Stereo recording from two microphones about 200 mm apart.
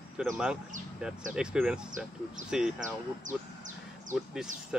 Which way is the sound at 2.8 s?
40° right (ahead or behind).